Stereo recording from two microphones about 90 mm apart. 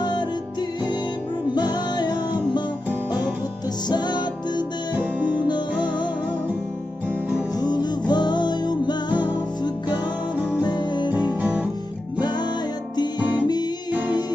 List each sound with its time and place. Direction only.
1.5 s music: 50° left (ahead or behind)
3.9 s music: 55° left (ahead or behind)
7.5 s music: 50° left (ahead or behind)
12.2 s music: 55° left (ahead or behind)